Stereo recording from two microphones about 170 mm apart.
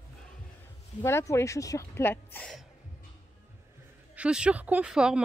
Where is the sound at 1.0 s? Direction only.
15° left (ahead or behind).